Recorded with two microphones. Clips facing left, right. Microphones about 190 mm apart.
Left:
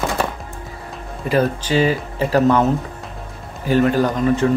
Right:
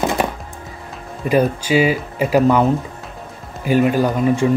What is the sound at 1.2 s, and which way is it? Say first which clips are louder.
Speech: right 2 dB; 10° right (ahead or behind).